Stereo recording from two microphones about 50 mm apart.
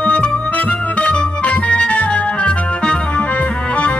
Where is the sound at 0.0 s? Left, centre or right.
Left.